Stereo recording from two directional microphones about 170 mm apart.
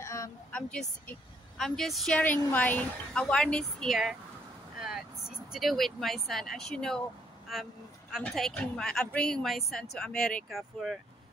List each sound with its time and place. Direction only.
0.0 s a sound: 20° left (ahead or behind)
0.5 s a woman's voice: 5° left (ahead or behind)
4.7 s vehicle: 5° right (ahead or behind)
5.5 s a woman's voice: centre (ahead or behind)